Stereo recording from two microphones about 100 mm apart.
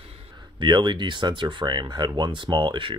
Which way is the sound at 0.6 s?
50° right (ahead or behind).